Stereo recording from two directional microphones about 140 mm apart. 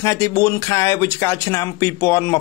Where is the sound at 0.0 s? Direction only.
25° left (ahead or behind).